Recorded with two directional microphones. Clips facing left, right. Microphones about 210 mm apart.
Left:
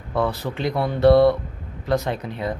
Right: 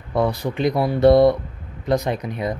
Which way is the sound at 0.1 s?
15° right (ahead or behind).